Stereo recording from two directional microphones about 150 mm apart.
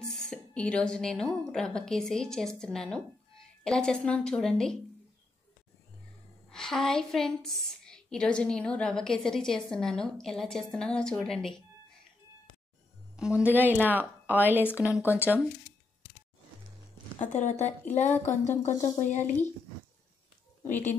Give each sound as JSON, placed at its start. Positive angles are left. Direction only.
{"t": 0.0, "sound": "a woman's voice", "side_deg": 0}
{"t": 6.5, "sound": "a woman's voice", "side_deg": 5}
{"t": 13.1, "sound": "a woman's voice", "side_deg": -5}
{"t": 17.3, "sound": "a woman's voice", "side_deg": 50}